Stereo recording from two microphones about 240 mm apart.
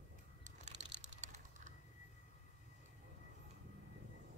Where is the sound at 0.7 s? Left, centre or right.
Right.